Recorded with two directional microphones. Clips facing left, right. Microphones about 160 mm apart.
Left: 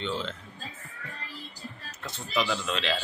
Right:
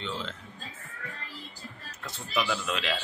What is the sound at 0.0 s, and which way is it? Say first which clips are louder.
Speech: left 4 dB; centre (ahead or behind).